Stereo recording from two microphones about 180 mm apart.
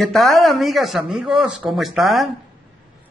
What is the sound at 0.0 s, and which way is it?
Speech, centre (ahead or behind).